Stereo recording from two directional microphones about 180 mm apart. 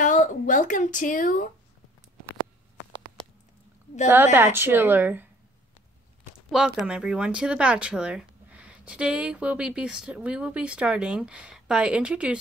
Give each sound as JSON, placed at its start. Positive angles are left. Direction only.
{"t": 0.0, "sound": "speech", "side_deg": 45}
{"t": 4.1, "sound": "a woman's voice", "side_deg": -10}
{"t": 6.5, "sound": "speech", "side_deg": -5}